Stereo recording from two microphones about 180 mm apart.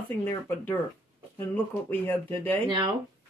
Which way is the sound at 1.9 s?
10° left (ahead or behind).